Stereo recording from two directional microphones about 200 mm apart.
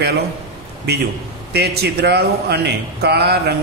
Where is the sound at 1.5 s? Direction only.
55° right (ahead or behind).